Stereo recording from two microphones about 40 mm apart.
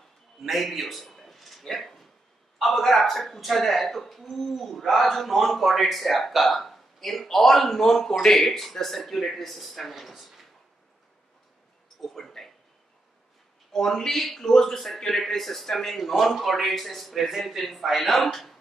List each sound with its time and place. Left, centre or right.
0.4 s a man's voice: centre
12.0 s a sound: centre
13.7 s speech: centre